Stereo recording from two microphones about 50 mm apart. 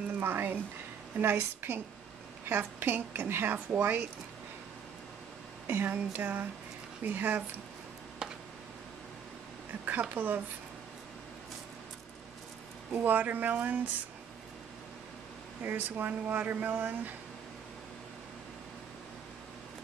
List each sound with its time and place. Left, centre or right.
0.2 s a woman's voice: right
5.7 s speech: right
8.2 s a sound: centre
10.1 s speech: right
12.9 s speech: right
15.6 s speech: right